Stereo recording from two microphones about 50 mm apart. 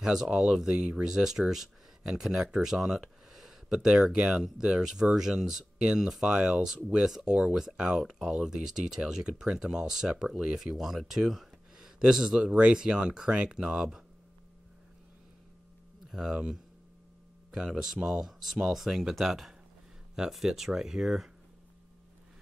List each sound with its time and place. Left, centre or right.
0.0 s speech: centre
0.7 s speech: right
1.0 s speech: centre
3.7 s speech: centre
4.3 s speech: centre
16.1 s speech: centre
17.5 s speech: centre